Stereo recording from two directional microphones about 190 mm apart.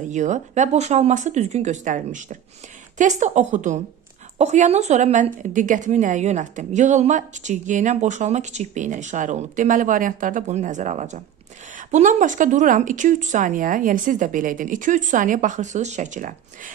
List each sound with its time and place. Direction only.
0.1 s a woman's voice: 40° right (ahead or behind)